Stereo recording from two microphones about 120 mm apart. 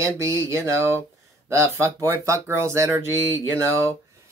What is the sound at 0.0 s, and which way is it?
Speech, 25° right (ahead or behind).